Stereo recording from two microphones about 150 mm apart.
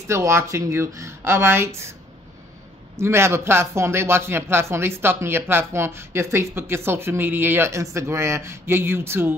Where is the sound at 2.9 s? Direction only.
15° right (ahead or behind).